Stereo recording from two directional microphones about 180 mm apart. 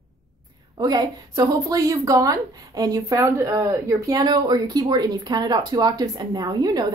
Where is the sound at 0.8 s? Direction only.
20° right (ahead or behind).